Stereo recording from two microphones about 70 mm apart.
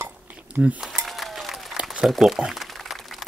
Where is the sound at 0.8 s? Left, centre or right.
Centre.